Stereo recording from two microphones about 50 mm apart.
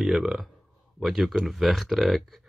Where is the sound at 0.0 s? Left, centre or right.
Centre.